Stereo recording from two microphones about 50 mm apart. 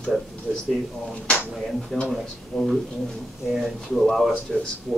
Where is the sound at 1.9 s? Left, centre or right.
Centre.